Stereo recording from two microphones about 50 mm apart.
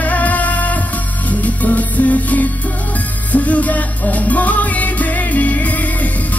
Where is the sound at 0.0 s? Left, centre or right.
Left.